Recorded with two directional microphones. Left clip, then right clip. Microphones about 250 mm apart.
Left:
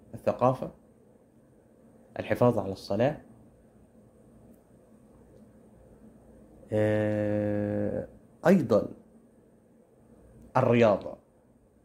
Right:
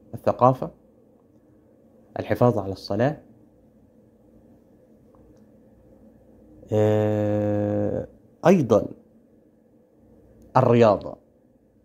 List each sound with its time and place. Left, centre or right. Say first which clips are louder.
0.1 s speech: right 7 dB; centre
2.1 s speech: right 4 dB; centre
6.7 s a sound: right 6 dB; right
10.5 s speech: right 6 dB; right